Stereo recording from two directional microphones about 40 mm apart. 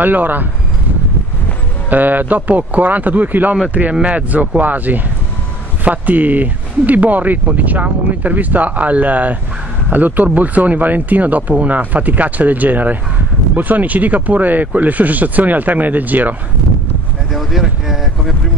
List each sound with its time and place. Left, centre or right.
0.0 s speech: right
1.9 s speech: right
17.3 s speech: centre